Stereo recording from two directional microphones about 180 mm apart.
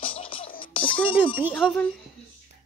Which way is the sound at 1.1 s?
30° left (ahead or behind).